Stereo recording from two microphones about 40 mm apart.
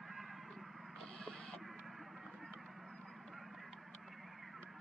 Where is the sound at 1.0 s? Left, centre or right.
Centre.